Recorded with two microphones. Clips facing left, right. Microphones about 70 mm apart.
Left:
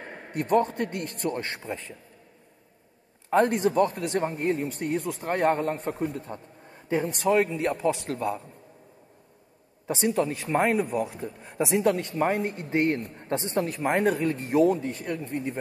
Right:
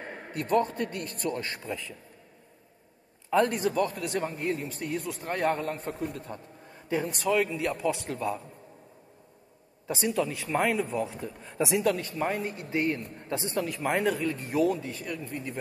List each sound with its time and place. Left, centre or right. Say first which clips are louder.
0.4 s speech: left 3 dB; left
3.4 s speech: left 4 dB; left
4.4 s a man's voice: left 4 dB; left
9.8 s speech: left 3 dB; left
10.5 s a man's voice: left 3 dB; centre; by 13.1 s left
13.2 s a man's voice: left 3 dB; left
14.6 s speech: left 4 dB; left